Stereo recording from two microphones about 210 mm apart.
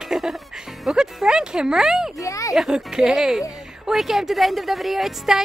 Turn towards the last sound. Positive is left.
turn(degrees=0)  # may be behind; listen again after turning